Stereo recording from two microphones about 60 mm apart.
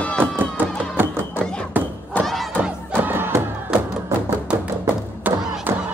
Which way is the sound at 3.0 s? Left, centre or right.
Right.